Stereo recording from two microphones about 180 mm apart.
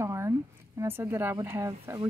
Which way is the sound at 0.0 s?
15° right (ahead or behind).